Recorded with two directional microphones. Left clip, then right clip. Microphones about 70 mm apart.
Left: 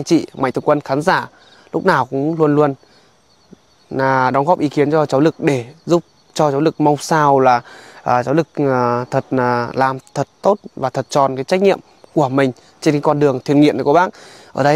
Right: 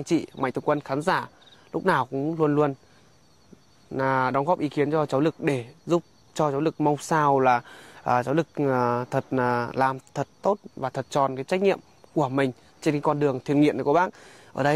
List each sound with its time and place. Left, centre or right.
0.0 s speech: left
3.9 s speech: left